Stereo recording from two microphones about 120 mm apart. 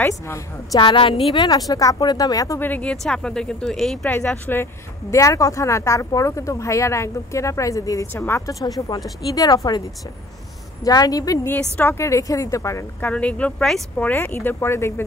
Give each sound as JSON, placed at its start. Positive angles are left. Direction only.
{"t": 0.0, "sound": "speech", "side_deg": 25}
{"t": 0.7, "sound": "a woman's voice", "side_deg": 45}
{"t": 1.3, "sound": "speech", "side_deg": 35}
{"t": 2.6, "sound": "speech", "side_deg": 10}
{"t": 5.1, "sound": "speech", "side_deg": 25}
{"t": 13.0, "sound": "speech", "side_deg": 10}